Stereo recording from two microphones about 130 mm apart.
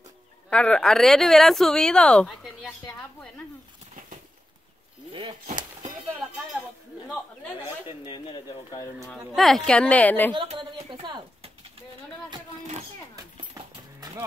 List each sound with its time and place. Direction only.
0.5 s speech: 5° left (ahead or behind)
8.1 s speech: 40° left (ahead or behind)
9.3 s a woman's voice: centre (ahead or behind)
10.6 s a woman's voice: 35° right (ahead or behind)